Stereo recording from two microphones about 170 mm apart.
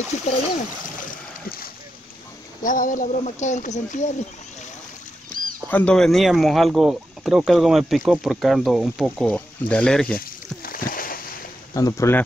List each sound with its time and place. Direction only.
0.1 s speech: 40° left (ahead or behind)
1.0 s a sound: 60° left (ahead or behind)
2.6 s speech: 50° left (ahead or behind)
5.7 s speech: 10° left (ahead or behind)
10.1 s a sound: 60° left (ahead or behind)
11.7 s speech: 20° left (ahead or behind)